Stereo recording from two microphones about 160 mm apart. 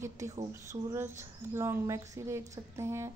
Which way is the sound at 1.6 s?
20° right (ahead or behind).